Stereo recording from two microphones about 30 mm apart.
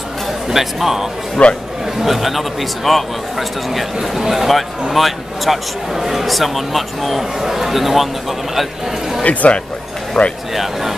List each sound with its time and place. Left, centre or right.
0.5 s speech: centre
1.4 s a man's voice: left
2.0 s a man's voice: centre
9.2 s speech: left
10.2 s speech: left
10.5 s speech: centre